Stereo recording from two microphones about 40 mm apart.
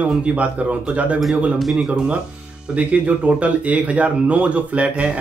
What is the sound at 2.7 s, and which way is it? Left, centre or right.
Speech, right.